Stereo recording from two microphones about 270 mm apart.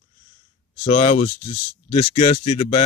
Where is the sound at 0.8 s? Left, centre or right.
Left.